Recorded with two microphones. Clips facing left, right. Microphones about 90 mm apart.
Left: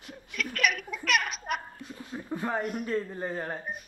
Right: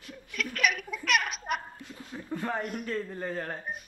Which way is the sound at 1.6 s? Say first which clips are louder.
Left 1 dB; 15° left (ahead or behind).